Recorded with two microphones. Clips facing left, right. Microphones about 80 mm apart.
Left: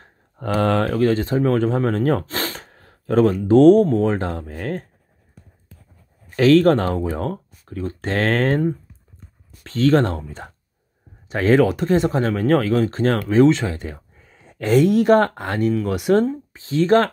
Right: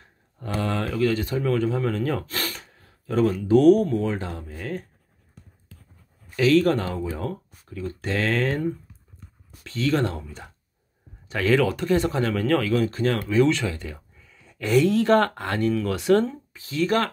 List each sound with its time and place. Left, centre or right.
0.4 s speech: left
2.2 s gasp: left
3.3 s speech: left
4.1 s speech: left
6.3 s speech: left
11.2 s speech: left